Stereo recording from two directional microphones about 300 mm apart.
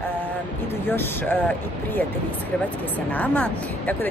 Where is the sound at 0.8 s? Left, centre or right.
Centre.